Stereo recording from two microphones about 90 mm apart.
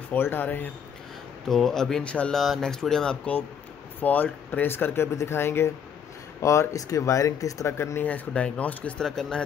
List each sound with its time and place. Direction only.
0.1 s speech: 20° left (ahead or behind)
1.5 s speech: 5° left (ahead or behind); by 8.2 s 25° left (ahead or behind)
8.3 s speech: 10° left (ahead or behind)
9.0 s speech: 5° left (ahead or behind)